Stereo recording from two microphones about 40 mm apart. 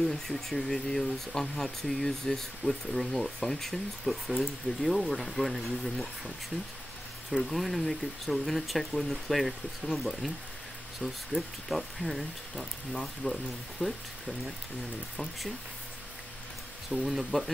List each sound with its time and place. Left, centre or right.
0.0 s speech: centre
7.4 s speech: centre
11.3 s speech: left
11.7 s speech: centre
17.1 s speech: centre